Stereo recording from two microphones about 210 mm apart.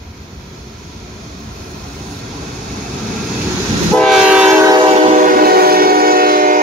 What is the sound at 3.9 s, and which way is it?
Train, centre (ahead or behind).